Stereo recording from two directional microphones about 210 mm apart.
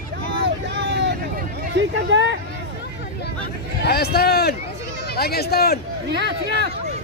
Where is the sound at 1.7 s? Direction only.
60° right (ahead or behind).